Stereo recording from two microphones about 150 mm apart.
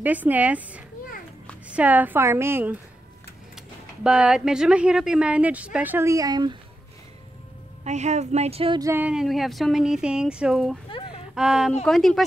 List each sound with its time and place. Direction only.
0.0 s speech: 10° right (ahead or behind); by 6.5 s 25° right (ahead or behind)
7.8 s speech: 50° right (ahead or behind)
8.7 s speech: 20° right (ahead or behind)
9.0 s speech: 5° right (ahead or behind)